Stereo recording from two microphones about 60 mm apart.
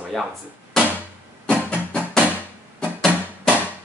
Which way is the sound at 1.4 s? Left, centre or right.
Centre.